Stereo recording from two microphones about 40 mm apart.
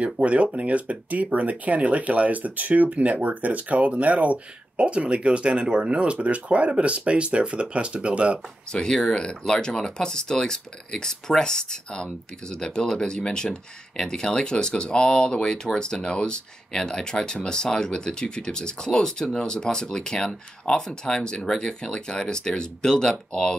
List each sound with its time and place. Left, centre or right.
0.0 s speech: right
8.7 s speech: centre